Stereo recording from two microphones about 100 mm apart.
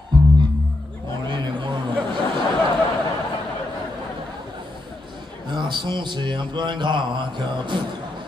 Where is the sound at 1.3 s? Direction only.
50° right (ahead or behind).